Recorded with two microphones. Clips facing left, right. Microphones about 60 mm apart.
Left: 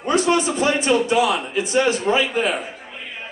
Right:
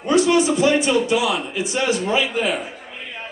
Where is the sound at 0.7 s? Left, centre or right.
Left.